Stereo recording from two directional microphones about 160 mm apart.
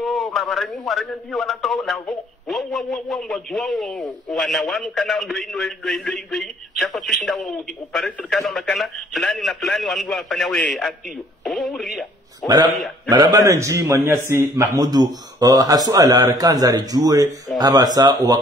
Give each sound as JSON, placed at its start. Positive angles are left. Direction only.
{"t": 0.0, "sound": "a man's voice", "side_deg": 0}
{"t": 13.1, "sound": "a man's voice", "side_deg": -25}